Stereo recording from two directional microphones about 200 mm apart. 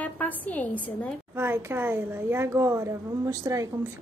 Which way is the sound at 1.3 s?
10° right (ahead or behind).